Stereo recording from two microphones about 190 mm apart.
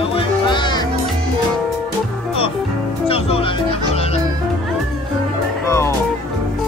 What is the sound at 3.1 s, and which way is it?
Music, 30° left (ahead or behind).